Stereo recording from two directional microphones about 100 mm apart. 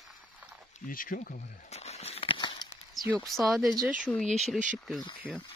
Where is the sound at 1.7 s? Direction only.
90° left; by 3.1 s 50° left (ahead or behind).